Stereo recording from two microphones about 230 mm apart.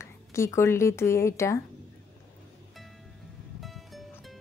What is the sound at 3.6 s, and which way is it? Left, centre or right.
Music, centre.